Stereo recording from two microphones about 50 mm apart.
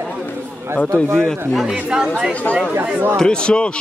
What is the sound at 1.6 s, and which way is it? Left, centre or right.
Speech, centre.